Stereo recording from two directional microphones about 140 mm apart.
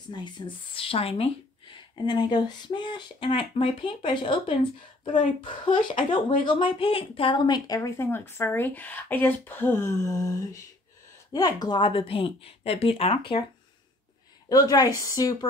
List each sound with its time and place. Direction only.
0.7 s a woman's voice: 40° left (ahead or behind)
14.5 s speech: 25° left (ahead or behind)